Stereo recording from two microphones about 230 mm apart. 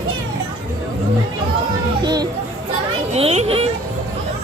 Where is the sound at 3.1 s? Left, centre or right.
Right.